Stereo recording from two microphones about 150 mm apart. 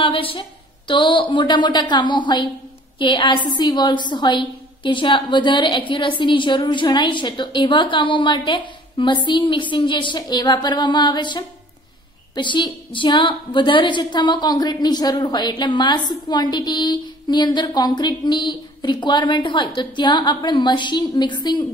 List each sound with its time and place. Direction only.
0.0 s a woman's voice: 35° left (ahead or behind)